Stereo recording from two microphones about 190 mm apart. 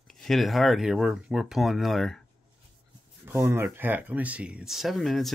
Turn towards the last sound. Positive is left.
turn(degrees=0)  # may be behind; listen again after turning